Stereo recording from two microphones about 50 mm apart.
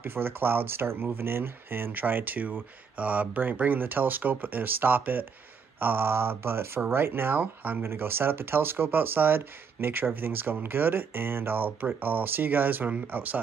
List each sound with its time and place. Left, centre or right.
0.0 s speech: right
7.8 s speech: right